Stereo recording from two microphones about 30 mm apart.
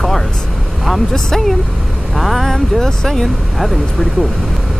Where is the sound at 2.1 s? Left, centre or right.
Centre.